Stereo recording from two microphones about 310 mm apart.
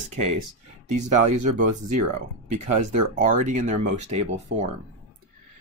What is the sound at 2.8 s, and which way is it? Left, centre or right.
Speech, right.